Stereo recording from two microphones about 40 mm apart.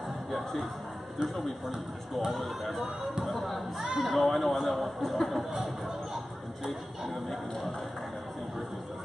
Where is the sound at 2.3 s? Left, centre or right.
Centre.